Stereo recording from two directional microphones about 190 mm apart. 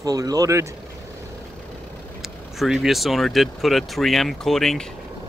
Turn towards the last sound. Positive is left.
turn(degrees=0)  # may be behind; listen again after turning